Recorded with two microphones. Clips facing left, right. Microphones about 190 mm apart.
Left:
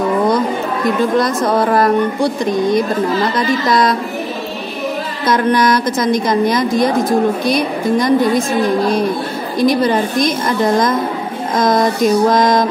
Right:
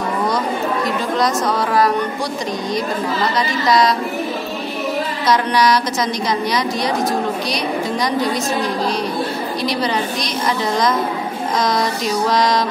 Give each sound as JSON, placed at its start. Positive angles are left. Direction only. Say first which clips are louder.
{"t": 1.1, "sound": "a woman's voice", "louder": "left 4 dB", "side_deg": 55}
{"t": 5.2, "sound": "a woman's voice", "louder": "left 3 dB", "side_deg": 50}